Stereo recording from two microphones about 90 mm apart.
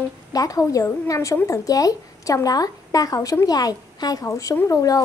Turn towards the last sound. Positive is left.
turn(degrees=40)  # may be behind; listen again after turning